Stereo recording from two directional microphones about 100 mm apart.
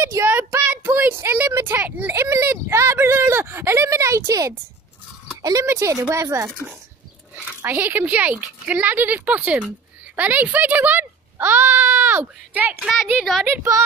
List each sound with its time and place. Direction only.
0.0 s child singing: 30° right (ahead or behind)
0.7 s a child's voice: 20° right (ahead or behind)
2.2 s a sound: 25° right (ahead or behind)
5.4 s speech: 35° right (ahead or behind)
7.6 s speech: 20° right (ahead or behind)
12.8 s a woman's voice: 5° right (ahead or behind)
13.5 s a woman's voice: 30° right (ahead or behind)